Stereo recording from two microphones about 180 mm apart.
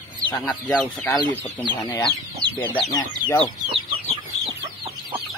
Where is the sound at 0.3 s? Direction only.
5° left (ahead or behind); by 3.1 s 20° left (ahead or behind).